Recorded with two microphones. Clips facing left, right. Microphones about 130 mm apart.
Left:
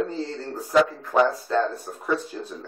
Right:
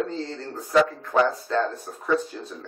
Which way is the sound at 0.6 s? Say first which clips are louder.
Even; 5° left (ahead or behind).